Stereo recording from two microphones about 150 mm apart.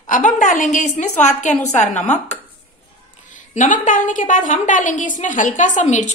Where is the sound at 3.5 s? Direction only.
60° left (ahead or behind).